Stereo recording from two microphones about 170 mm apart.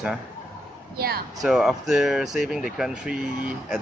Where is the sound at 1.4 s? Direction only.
Centre (ahead or behind).